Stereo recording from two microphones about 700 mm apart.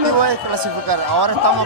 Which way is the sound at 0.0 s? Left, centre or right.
Right.